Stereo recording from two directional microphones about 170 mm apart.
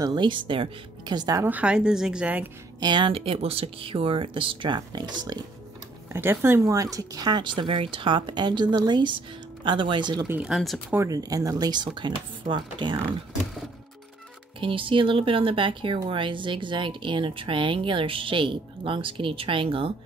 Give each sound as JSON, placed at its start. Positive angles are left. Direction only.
{"t": 0.0, "sound": "a woman's voice", "side_deg": -25}
{"t": 2.8, "sound": "speech", "side_deg": -30}
{"t": 6.1, "sound": "speech", "side_deg": -15}
{"t": 10.2, "sound": "speech", "side_deg": -10}
{"t": 10.9, "sound": "speech", "side_deg": -20}
{"t": 14.6, "sound": "speech", "side_deg": -30}